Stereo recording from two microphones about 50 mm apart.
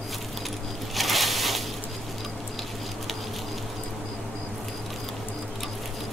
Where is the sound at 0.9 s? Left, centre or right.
Centre.